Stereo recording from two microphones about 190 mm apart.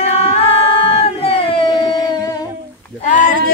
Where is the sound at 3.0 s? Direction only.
40° left (ahead or behind).